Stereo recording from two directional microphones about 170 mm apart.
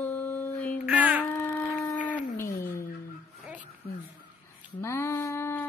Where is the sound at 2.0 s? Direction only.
10° left (ahead or behind).